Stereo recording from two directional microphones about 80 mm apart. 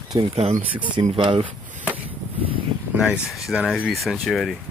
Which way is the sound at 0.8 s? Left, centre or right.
Right.